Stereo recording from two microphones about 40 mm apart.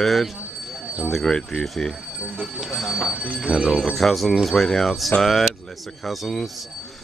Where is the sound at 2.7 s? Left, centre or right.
Centre.